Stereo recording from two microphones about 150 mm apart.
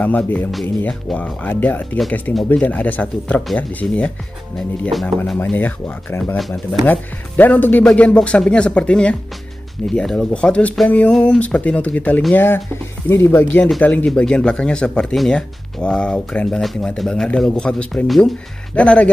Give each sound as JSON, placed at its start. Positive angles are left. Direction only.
{"t": 0.0, "sound": "speech", "side_deg": 10}